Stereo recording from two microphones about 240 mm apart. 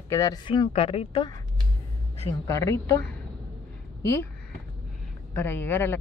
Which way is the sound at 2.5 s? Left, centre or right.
Centre.